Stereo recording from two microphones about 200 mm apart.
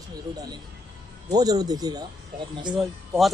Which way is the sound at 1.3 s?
20° right (ahead or behind).